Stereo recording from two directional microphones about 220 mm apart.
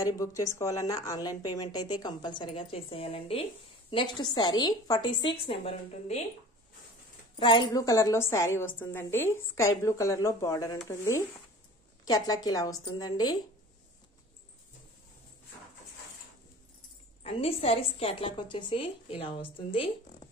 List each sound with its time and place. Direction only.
0.0 s a woman's voice: 15° left (ahead or behind)
7.3 s a woman's voice: 20° left (ahead or behind)
17.2 s a woman's voice: 25° left (ahead or behind)